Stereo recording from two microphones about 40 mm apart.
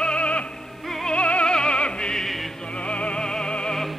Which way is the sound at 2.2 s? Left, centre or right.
Centre.